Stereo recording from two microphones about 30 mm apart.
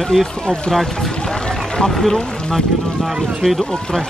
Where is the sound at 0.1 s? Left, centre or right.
Left.